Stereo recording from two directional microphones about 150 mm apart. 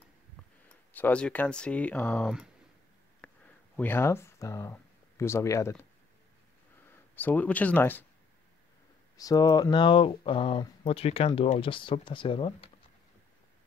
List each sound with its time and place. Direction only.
0.9 s speech: 10° left (ahead or behind)
3.2 s a sound: 10° left (ahead or behind)
3.7 s speech: 15° left (ahead or behind)
7.2 s speech: 10° left (ahead or behind)
9.1 s speech: 25° left (ahead or behind)